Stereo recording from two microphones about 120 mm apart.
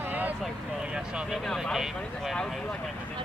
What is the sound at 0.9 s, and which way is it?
Speech, 5° right (ahead or behind).